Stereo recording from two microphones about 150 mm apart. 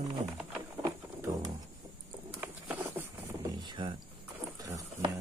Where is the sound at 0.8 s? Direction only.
20° right (ahead or behind).